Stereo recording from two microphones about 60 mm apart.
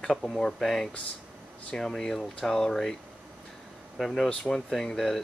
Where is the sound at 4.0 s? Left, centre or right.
Centre.